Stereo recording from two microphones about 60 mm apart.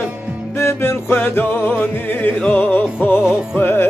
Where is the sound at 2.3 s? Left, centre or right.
Left.